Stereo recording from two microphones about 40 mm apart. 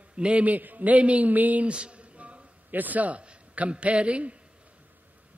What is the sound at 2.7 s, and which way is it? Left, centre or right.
Speech, right.